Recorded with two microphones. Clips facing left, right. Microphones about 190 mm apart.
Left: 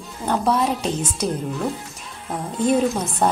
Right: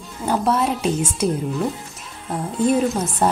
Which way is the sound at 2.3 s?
Centre (ahead or behind).